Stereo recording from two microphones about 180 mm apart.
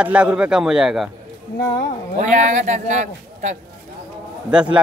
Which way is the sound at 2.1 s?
40° right (ahead or behind).